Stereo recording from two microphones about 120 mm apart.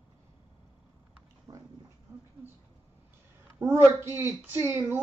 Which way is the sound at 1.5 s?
30° right (ahead or behind).